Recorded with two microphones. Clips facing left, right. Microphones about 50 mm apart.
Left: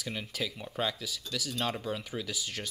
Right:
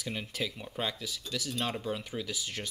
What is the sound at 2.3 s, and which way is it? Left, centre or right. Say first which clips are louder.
Speech: even; right.